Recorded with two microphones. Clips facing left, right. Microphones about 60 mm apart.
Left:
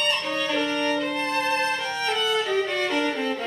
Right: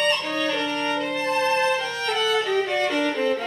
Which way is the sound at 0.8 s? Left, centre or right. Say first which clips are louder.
Even; centre.